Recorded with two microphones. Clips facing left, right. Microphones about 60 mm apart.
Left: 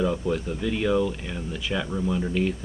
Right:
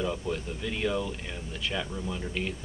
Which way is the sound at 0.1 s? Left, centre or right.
Centre.